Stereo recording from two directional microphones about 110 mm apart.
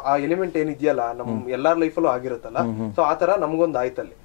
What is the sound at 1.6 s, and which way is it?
Speech, 20° left (ahead or behind).